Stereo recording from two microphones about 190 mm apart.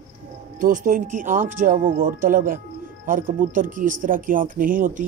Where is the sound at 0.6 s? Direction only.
45° right (ahead or behind).